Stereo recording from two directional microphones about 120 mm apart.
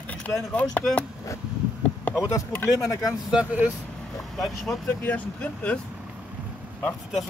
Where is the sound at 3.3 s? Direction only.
10° right (ahead or behind).